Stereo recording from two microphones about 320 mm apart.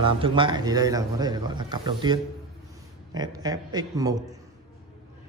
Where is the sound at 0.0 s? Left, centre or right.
Centre.